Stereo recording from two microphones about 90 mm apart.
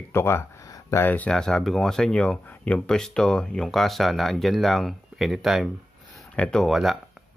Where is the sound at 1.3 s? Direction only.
5° left (ahead or behind).